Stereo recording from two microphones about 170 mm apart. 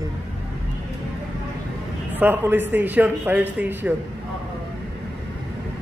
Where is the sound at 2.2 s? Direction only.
10° right (ahead or behind).